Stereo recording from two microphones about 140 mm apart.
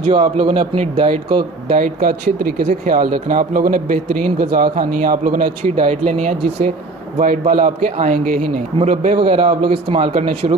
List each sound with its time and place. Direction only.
0.0 s a man's voice: 45° right (ahead or behind)
1.7 s speech: 80° right; by 6.7 s 55° right (ahead or behind)
7.2 s speech: 75° right (ahead or behind)
8.8 s a man's voice: 60° right (ahead or behind)
9.1 s a man's voice: 45° right (ahead or behind)